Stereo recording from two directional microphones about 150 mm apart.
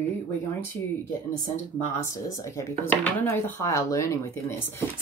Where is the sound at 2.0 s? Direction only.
20° left (ahead or behind).